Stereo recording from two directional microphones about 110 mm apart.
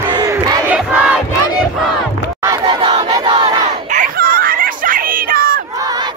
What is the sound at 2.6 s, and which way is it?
Battle cry, 45° right (ahead or behind).